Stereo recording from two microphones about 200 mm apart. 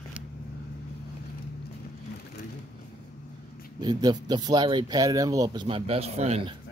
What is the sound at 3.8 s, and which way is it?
Speech, 20° right (ahead or behind).